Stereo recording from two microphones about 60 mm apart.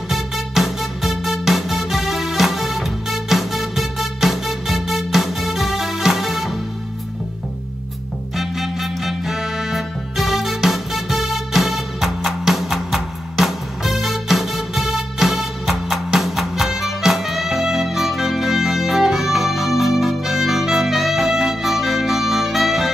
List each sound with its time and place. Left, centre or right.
0.1 s music: centre
8.4 s music: centre